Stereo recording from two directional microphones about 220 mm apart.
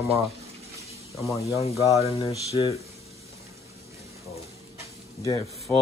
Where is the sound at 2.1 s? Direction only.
25° left (ahead or behind).